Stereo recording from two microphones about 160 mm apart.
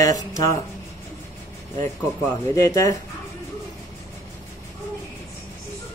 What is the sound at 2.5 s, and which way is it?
Speech, 20° left (ahead or behind).